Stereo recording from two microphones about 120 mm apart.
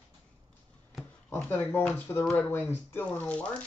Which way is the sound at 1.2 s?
15° left (ahead or behind).